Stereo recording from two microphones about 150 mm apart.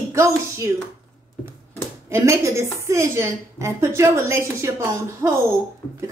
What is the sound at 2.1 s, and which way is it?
A woman's voice, 20° right (ahead or behind).